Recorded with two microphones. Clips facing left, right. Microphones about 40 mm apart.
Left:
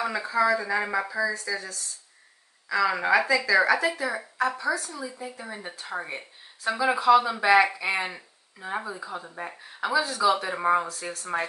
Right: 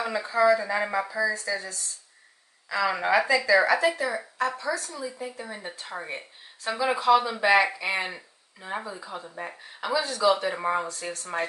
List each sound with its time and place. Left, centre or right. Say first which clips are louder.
0.0 s speech: right 1 dB; centre
9.2 s speech: even; centre
9.5 s speech: left 2 dB; centre